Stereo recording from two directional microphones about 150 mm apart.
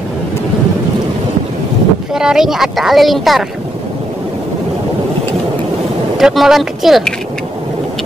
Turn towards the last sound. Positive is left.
turn(degrees=0)  # may be behind; listen again after turning